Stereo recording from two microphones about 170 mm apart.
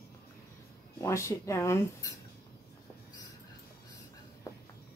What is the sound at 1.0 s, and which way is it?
Speech, 15° left (ahead or behind).